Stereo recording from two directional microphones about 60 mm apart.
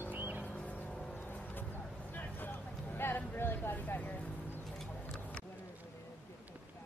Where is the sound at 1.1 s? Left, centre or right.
Left.